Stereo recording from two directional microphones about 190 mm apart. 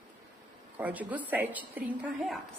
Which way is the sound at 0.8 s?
10° right (ahead or behind).